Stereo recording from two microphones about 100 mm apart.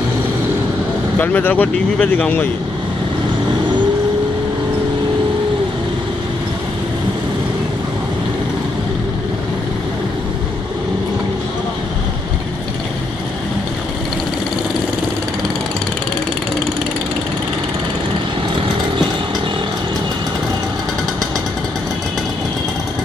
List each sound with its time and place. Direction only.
1.1 s speech: 20° left (ahead or behind)